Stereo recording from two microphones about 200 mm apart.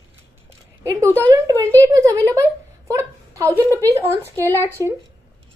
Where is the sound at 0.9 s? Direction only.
15° right (ahead or behind).